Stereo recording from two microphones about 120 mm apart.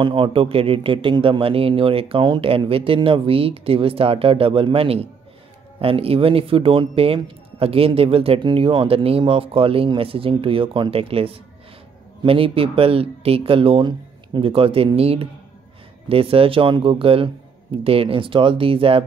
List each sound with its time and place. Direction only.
0.0 s speech: 45° right (ahead or behind)